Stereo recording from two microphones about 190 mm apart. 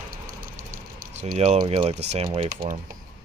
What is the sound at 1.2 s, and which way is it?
Speech, 35° right (ahead or behind).